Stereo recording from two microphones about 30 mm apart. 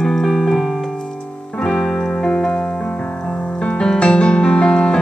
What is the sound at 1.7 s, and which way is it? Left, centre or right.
Keyboard, left.